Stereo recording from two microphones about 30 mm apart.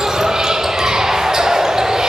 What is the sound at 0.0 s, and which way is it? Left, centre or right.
Basketball bounce, centre.